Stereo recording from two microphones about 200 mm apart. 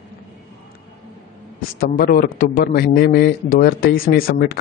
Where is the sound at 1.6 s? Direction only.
45° left (ahead or behind).